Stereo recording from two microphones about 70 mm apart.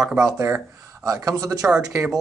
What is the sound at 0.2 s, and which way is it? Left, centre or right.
Speech, right.